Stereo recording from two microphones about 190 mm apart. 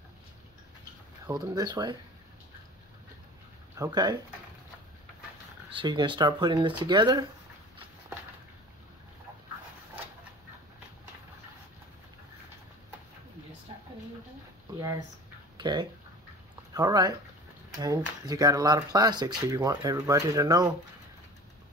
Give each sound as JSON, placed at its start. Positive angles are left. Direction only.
{"t": 1.2, "sound": "speech", "side_deg": -20}
{"t": 3.7, "sound": "speech", "side_deg": -20}
{"t": 5.7, "sound": "speech", "side_deg": -25}
{"t": 14.8, "sound": "a sound", "side_deg": -15}
{"t": 16.7, "sound": "speech", "side_deg": -20}